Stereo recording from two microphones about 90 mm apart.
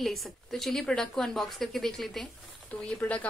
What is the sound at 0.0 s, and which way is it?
A woman's voice, centre (ahead or behind).